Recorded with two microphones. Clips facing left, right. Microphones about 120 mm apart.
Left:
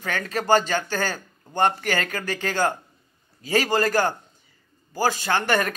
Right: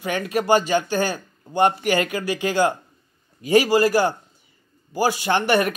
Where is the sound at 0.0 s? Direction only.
15° right (ahead or behind).